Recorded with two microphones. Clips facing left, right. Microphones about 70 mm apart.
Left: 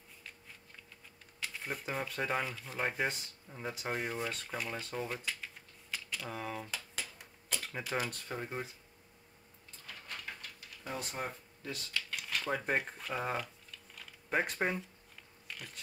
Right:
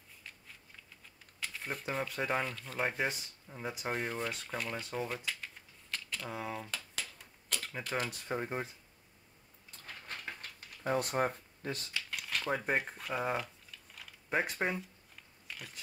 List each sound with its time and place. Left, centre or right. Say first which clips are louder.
1.4 s speech: even; centre
8.3 s speech: right 3 dB; right
10.8 s speech: right 8 dB; right
11.9 s cutlery: even; centre